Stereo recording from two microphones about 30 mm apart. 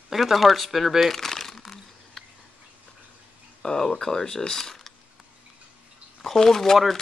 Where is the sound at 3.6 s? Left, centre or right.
Left.